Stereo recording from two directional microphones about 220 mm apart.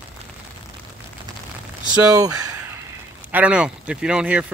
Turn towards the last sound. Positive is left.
turn(degrees=-5)  # may be behind; listen again after turning